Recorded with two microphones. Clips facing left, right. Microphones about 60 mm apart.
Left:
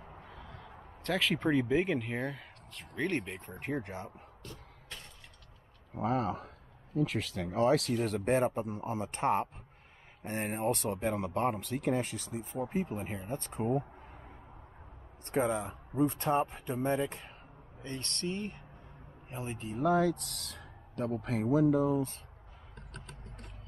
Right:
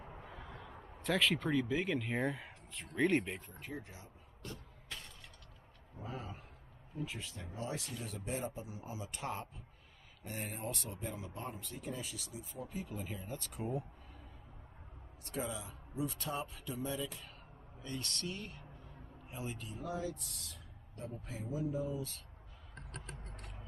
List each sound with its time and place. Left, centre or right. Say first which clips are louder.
0.2 s a sound: left 1 dB; centre
1.5 s speech: left 5 dB; left
1.8 s speech: left 5 dB; centre
2.0 s speech: even; centre
3.5 s speech: left 10 dB; left
5.9 s speech: left 14 dB; left
15.2 s speech: left 10 dB; left
19.8 s speech: left 14 dB; left